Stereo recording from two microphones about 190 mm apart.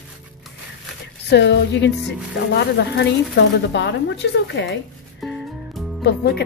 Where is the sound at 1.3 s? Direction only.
65° left (ahead or behind).